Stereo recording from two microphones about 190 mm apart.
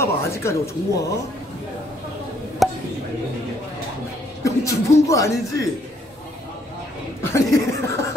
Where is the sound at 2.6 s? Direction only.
Centre (ahead or behind).